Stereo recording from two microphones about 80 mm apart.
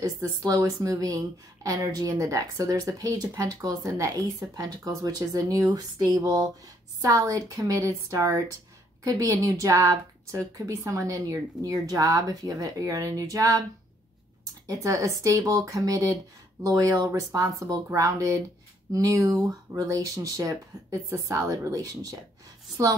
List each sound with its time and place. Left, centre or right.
0.0 s speech: right